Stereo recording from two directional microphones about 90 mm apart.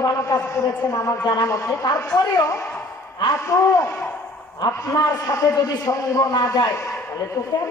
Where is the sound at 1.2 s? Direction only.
50° left (ahead or behind).